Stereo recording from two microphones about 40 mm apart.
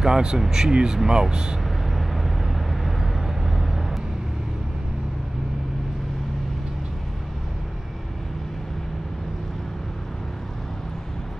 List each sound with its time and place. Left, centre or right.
0.0 s speech: centre
1.6 s vehicle: centre